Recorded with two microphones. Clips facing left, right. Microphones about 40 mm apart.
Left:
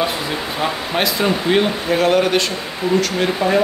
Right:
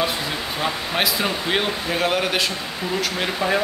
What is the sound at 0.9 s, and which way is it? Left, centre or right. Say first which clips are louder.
Speech: left 5 dB; centre.